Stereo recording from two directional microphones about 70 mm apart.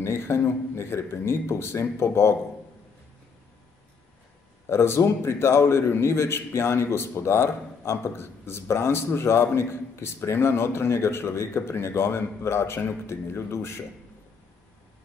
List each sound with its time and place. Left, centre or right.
0.0 s speech: left
4.6 s a man's voice: left